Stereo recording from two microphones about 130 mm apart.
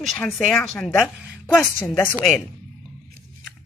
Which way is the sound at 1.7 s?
15° left (ahead or behind).